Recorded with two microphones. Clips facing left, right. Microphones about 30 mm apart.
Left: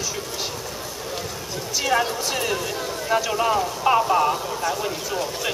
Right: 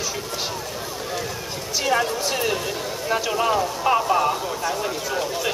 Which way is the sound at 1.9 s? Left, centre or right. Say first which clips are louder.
Right 1 dB; centre.